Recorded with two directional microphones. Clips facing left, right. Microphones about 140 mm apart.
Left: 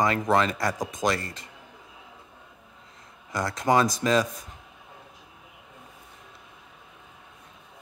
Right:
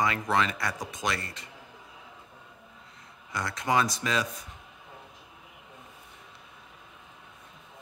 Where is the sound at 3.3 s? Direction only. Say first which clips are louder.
Left 5 dB; 40° left (ahead or behind).